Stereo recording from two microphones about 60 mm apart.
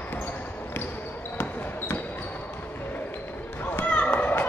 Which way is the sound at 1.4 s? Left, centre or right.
Left.